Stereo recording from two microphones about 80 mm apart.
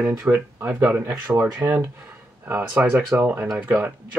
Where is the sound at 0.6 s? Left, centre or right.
Right.